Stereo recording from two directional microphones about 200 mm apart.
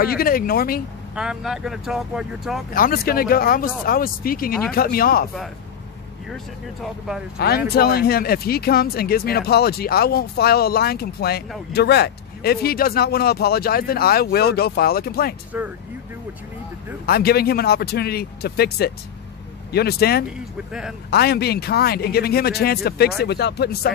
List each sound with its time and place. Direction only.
0.0 s speech: 50° left (ahead or behind)
1.1 s speech: 5° right (ahead or behind)
2.7 s speech: 45° left (ahead or behind)
6.3 s speech: centre (ahead or behind)
7.3 s speech: 50° left (ahead or behind)
15.5 s speech: 10° right (ahead or behind)
17.0 s speech: 50° left (ahead or behind)